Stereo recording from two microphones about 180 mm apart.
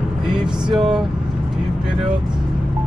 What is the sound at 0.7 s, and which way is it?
Speech, centre (ahead or behind).